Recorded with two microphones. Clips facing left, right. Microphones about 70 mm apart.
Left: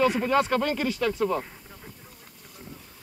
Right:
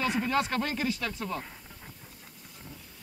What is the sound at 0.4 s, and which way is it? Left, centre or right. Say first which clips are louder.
Speech: left 5 dB; left.